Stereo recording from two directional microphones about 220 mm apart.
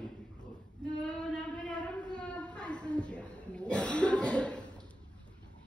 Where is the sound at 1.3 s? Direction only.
5° left (ahead or behind).